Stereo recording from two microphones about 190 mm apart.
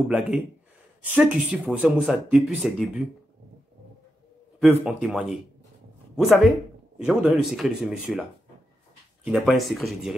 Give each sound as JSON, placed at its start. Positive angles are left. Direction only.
{"t": 1.0, "sound": "speech", "side_deg": -5}
{"t": 4.6, "sound": "speech", "side_deg": -5}